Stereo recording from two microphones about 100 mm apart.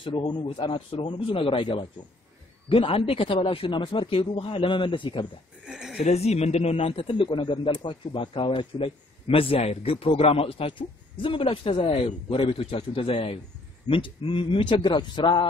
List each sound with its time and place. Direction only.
0.2 s speech: 55° left (ahead or behind)
5.7 s speech: 5° right (ahead or behind)
6.0 s a man's voice: 90° left; by 15.4 s 55° left (ahead or behind)